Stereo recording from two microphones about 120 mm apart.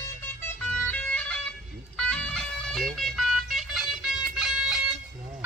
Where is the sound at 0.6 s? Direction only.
10° left (ahead or behind).